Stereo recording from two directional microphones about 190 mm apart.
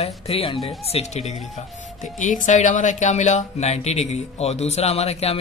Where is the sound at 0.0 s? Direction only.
30° left (ahead or behind).